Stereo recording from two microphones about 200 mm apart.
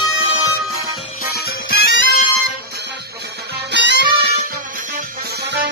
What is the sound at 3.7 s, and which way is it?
Music, 60° right (ahead or behind).